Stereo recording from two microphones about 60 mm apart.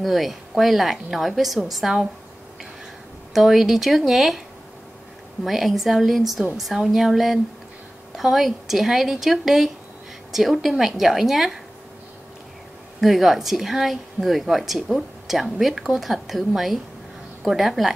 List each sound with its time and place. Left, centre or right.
0.0 s a woman's voice: centre
3.3 s a woman's voice: centre
5.4 s a woman's voice: centre
13.0 s a woman's voice: centre